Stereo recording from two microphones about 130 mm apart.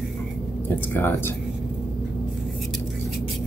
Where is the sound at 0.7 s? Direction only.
15° left (ahead or behind).